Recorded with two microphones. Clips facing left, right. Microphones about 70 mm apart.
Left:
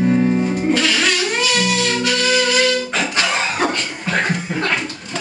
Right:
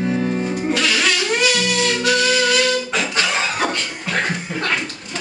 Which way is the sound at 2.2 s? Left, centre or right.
Left.